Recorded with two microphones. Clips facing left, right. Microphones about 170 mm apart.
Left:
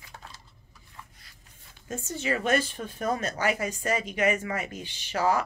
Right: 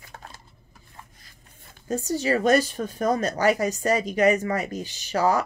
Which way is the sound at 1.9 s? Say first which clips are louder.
Right 7 dB; 35° right (ahead or behind).